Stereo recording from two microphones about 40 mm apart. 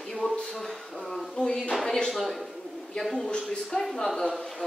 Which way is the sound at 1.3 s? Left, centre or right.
Centre.